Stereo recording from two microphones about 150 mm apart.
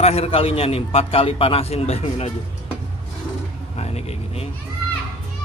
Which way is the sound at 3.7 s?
45° left (ahead or behind).